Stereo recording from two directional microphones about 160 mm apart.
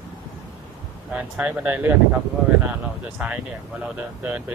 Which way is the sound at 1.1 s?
10° right (ahead or behind).